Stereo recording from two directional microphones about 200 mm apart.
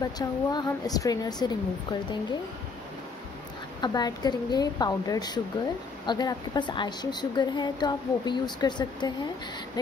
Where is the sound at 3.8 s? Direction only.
20° left (ahead or behind).